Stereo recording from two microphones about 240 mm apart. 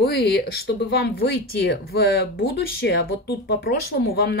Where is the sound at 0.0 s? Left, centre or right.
Left.